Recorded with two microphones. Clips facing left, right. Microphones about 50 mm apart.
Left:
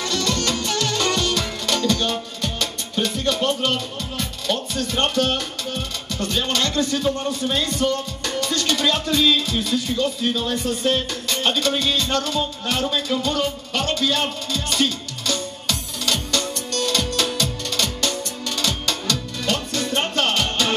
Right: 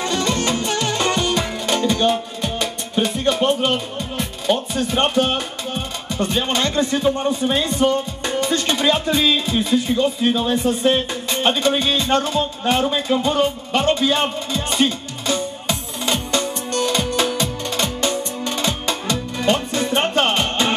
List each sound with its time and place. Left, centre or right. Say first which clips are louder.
0.0 s music: right 3 dB; right